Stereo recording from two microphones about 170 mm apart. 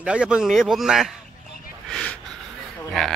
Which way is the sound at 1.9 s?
5° left (ahead or behind).